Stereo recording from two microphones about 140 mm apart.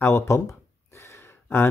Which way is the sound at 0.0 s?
20° left (ahead or behind).